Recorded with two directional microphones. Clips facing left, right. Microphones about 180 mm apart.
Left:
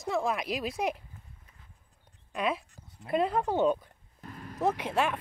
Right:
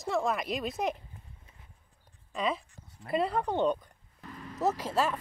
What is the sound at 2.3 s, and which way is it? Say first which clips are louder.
Speech: left 1 dB; 5° left (ahead or behind).